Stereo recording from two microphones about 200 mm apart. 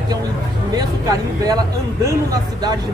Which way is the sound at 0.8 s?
20° right (ahead or behind).